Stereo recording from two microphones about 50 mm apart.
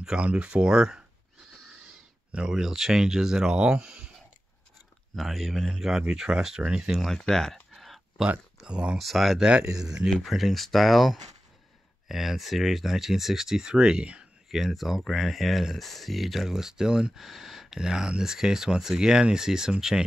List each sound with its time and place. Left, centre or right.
0.0 s speech: right
2.3 s speech: centre
5.1 s speech: centre
5.7 s speech: centre
7.2 s speech: centre
7.7 s a sound: centre
8.6 s speech: centre
8.9 s speech: centre
9.4 s speech: centre
10.2 s speech: centre
14.5 s speech: centre